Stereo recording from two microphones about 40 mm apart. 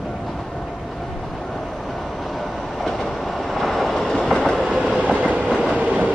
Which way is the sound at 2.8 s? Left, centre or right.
Centre.